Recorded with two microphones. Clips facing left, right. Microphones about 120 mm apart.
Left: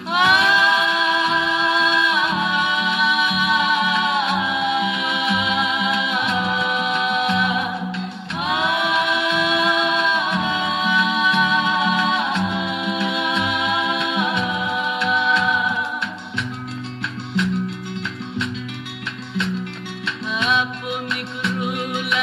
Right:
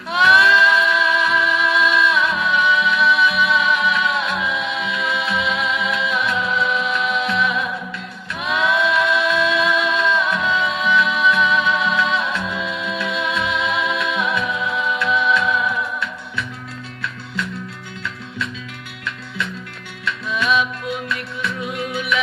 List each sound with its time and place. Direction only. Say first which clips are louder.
0.1 s music: right 2 dB; 20° left (ahead or behind)
20.1 s music: right 2 dB; 25° left (ahead or behind)